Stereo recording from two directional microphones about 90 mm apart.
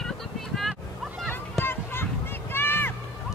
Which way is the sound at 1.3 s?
25° left (ahead or behind).